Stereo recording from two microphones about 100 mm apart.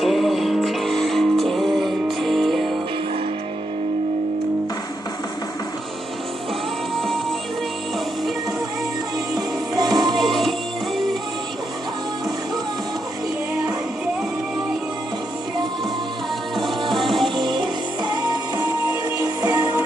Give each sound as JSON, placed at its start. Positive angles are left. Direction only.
{"t": 0.0, "sound": "music", "side_deg": 0}
{"t": 9.3, "sound": "music", "side_deg": -45}
{"t": 10.1, "sound": "music", "side_deg": 0}
{"t": 16.9, "sound": "music", "side_deg": 0}
{"t": 17.4, "sound": "music", "side_deg": -50}
{"t": 18.9, "sound": "music", "side_deg": -30}